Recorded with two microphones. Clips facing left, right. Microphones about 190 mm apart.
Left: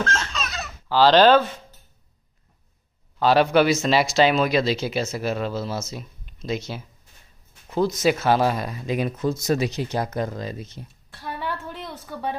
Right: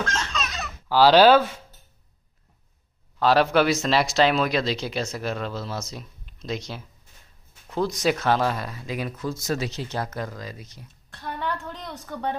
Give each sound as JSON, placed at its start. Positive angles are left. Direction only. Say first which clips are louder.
{"t": 0.1, "sound": "baby laughter", "louder": "left 1 dB", "side_deg": 5}
{"t": 0.8, "sound": "speech", "louder": "even", "side_deg": -10}
{"t": 3.2, "sound": "speech", "louder": "left 2 dB", "side_deg": 0}
{"t": 11.1, "sound": "a woman's voice", "louder": "even", "side_deg": 10}